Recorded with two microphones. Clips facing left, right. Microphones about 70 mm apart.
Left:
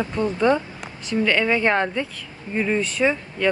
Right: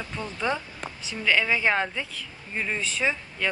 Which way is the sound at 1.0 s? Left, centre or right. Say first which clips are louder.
Left 4 dB; centre.